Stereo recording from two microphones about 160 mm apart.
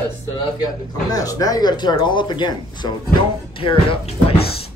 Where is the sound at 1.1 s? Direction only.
20° left (ahead or behind).